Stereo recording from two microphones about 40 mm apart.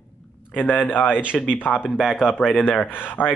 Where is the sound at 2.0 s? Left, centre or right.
Centre.